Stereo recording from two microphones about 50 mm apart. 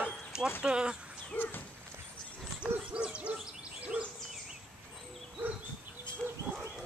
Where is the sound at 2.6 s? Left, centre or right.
Right.